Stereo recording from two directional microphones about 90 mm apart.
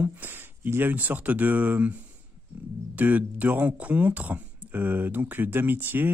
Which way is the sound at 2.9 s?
20° right (ahead or behind).